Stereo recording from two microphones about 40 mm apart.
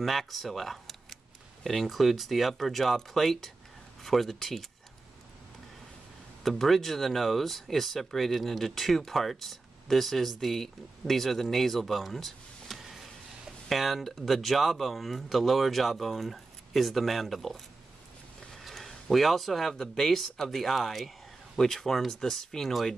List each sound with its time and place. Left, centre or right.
0.0 s speech: centre
6.4 s speech: centre
18.6 s a sound: centre
19.8 s speech: centre